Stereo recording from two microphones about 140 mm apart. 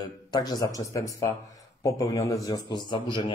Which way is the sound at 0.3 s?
30° left (ahead or behind).